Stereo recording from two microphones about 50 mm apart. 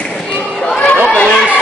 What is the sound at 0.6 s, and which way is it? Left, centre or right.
Chatter, centre.